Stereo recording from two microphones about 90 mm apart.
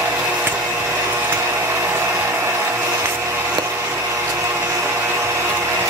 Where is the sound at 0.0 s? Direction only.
20° right (ahead or behind).